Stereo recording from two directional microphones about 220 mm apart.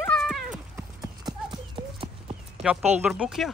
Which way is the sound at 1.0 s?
20° right (ahead or behind).